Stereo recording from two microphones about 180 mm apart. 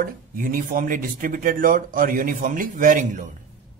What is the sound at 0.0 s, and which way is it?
Speech, 50° right (ahead or behind).